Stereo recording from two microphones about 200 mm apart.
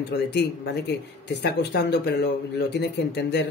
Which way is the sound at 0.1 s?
55° left (ahead or behind).